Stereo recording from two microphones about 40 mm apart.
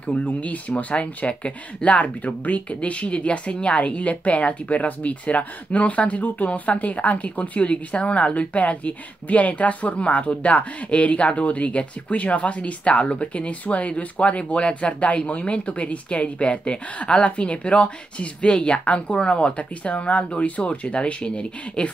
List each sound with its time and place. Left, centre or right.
0.0 s speech: left